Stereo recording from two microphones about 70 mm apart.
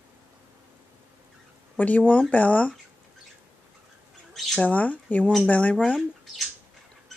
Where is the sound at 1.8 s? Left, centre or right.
Left.